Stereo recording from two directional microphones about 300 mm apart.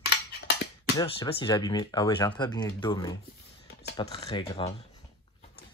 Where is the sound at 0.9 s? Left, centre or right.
Centre.